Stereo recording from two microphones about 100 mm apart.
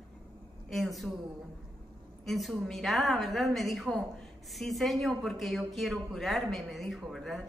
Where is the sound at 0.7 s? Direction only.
Centre (ahead or behind).